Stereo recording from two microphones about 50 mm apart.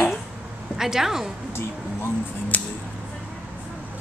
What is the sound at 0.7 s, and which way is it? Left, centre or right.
Speech, centre.